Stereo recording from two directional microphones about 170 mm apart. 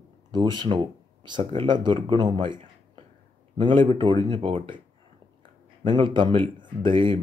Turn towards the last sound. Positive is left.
turn(degrees=-30)  # may be behind; listen again after turning